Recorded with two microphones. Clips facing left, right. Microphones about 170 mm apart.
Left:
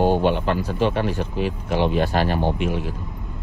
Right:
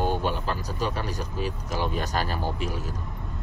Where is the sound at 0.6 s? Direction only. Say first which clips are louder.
Left 8 dB; 40° right (ahead or behind).